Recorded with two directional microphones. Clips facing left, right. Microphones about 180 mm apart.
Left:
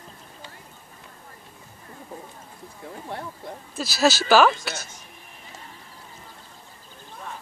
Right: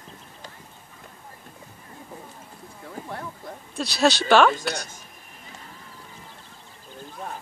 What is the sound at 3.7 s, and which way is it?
Speech, 5° left (ahead or behind).